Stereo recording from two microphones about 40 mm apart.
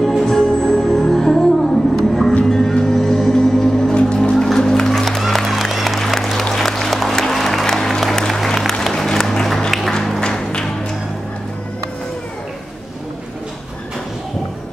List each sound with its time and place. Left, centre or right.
0.2 s music: centre
5.4 s applause: centre
8.9 s a sound: centre